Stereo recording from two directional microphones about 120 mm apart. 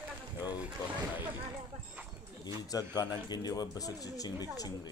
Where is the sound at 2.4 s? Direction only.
35° left (ahead or behind).